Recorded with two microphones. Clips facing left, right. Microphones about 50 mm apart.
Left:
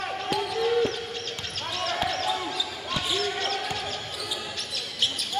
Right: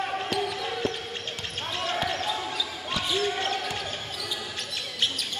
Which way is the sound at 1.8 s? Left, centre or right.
Right.